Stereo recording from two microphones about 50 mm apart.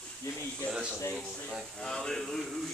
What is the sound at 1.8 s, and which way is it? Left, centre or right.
Speech, centre.